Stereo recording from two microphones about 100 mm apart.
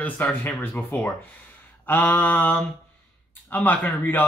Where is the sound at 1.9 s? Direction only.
20° left (ahead or behind).